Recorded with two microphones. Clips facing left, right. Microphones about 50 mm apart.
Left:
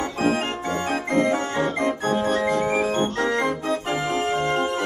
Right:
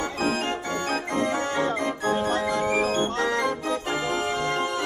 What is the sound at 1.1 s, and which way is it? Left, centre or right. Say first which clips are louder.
Organ: left 5 dB; left.